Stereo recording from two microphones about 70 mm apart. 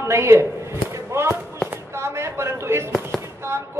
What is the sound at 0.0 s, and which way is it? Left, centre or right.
A man's voice, right.